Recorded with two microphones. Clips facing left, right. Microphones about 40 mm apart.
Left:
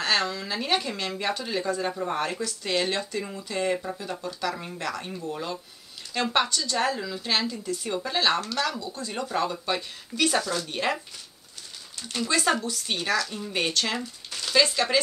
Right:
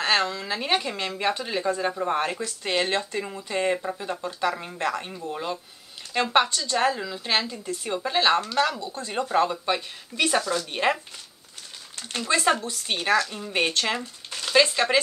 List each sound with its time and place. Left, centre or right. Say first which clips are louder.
0.0 s speech: right 2 dB; right
2.4 s speech: right 1 dB; right
5.0 s speech: right 1 dB; centre
12.2 s speech: right 2 dB; right